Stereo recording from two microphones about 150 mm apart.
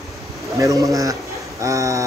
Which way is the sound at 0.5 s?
20° right (ahead or behind).